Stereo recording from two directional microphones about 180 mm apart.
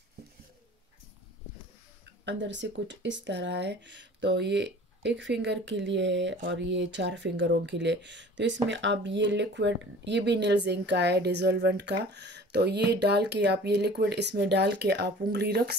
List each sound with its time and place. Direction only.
2.2 s speech: 85° right; by 15.7 s 65° right (ahead or behind)